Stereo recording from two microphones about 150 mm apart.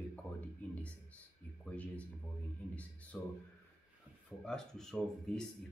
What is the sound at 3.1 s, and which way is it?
Speech, 10° left (ahead or behind).